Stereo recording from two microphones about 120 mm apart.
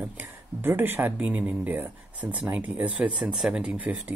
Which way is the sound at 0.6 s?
20° right (ahead or behind).